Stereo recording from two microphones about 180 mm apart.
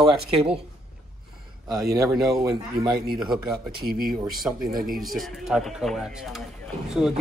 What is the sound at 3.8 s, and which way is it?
Speech, 55° right (ahead or behind).